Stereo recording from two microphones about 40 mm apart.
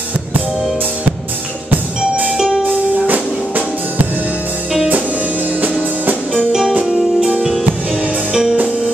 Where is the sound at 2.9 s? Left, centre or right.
Right.